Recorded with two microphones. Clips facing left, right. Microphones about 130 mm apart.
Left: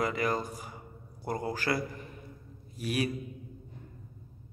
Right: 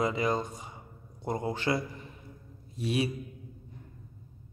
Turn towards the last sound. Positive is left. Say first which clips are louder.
# right 2 dB
turn(degrees=-25)  # may be behind; listen again after turning